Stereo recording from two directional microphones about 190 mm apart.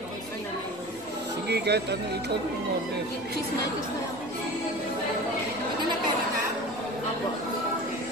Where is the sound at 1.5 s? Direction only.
60° right (ahead or behind).